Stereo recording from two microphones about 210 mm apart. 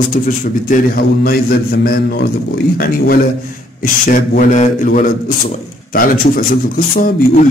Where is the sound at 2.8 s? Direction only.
45° left (ahead or behind).